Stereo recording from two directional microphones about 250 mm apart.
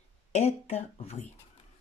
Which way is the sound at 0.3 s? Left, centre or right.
Left.